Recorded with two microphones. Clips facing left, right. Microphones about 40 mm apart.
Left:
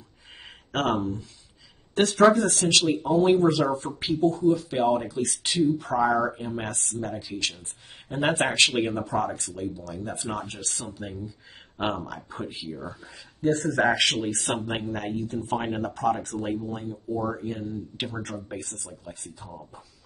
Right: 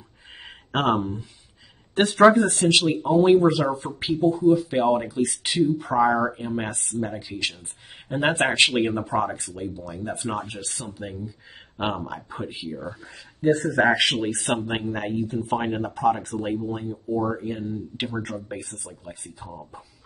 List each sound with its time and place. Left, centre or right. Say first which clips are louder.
0.7 s speech: right 3 dB; centre
2.3 s speech: right 6 dB; right
2.6 s speech: right 2 dB; centre
10.2 s speech: right 3 dB; right
10.5 s speech: right 1 dB; centre